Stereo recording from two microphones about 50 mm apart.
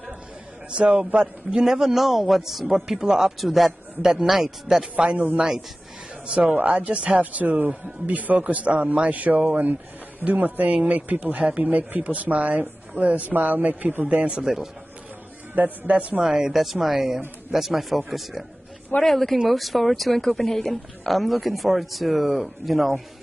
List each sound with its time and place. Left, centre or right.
0.7 s a man's voice: right
4.9 s speech: right
6.6 s speech: right
7.2 s a man's voice: right
14.3 s a man's voice: centre
15.5 s speech: right
16.2 s a man's voice: centre